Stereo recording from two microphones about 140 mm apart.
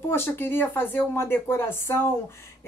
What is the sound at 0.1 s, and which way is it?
A woman's voice, 15° left (ahead or behind).